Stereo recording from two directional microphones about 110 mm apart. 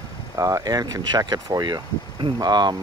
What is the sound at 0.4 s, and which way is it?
Speech, 30° right (ahead or behind).